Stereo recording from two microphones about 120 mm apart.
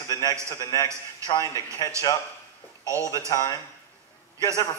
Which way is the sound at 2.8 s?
25° right (ahead or behind).